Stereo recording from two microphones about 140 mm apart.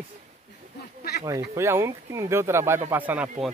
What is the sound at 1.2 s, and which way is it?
Speech, 20° right (ahead or behind).